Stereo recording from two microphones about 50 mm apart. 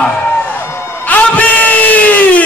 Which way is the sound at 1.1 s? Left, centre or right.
Left.